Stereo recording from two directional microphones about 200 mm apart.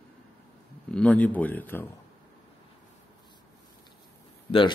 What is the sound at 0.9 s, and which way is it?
Speech, 5° left (ahead or behind).